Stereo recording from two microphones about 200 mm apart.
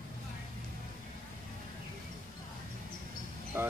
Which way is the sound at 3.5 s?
10° right (ahead or behind).